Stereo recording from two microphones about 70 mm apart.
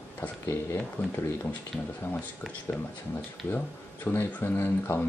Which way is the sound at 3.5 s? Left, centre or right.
Left.